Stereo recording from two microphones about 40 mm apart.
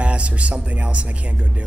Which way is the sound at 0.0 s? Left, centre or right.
Right.